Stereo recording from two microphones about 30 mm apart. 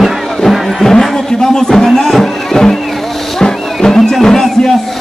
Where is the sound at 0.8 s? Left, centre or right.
Centre.